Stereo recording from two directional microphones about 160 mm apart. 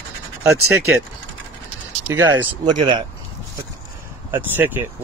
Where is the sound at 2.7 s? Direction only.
30° right (ahead or behind).